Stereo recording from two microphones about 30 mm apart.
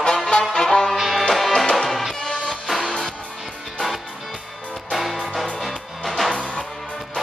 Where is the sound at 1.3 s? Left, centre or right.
Centre.